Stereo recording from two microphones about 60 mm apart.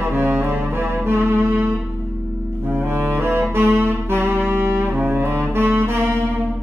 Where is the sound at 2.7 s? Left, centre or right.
Right.